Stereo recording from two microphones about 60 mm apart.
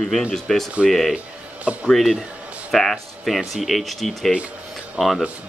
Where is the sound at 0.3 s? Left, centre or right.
Centre.